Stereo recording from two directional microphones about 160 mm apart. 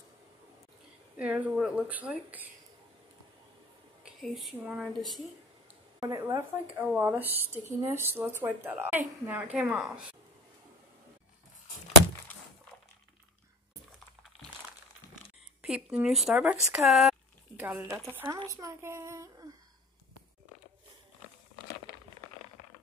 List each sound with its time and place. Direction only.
1.1 s speech: 10° right (ahead or behind)
4.0 s a sound: centre (ahead or behind)
4.8 s a woman's voice: centre (ahead or behind)
5.9 s speech: 20° right (ahead or behind)
6.7 s speech: 10° right (ahead or behind)
15.6 s speech: 5° right (ahead or behind)